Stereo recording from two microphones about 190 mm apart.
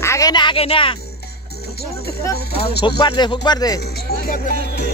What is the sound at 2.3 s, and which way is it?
Speech, 55° left (ahead or behind).